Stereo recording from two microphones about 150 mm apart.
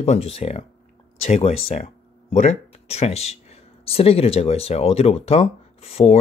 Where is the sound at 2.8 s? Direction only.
45° left (ahead or behind).